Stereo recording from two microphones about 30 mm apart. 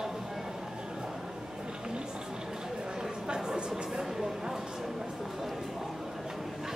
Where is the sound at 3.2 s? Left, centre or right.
Right.